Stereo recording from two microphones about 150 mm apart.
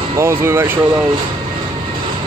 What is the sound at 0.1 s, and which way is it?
Speech, 20° right (ahead or behind).